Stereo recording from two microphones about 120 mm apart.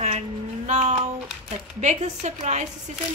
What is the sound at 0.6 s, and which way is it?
Speech, 70° right (ahead or behind).